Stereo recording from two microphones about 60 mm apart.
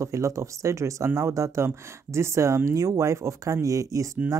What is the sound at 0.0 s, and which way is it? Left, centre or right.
Speech, right.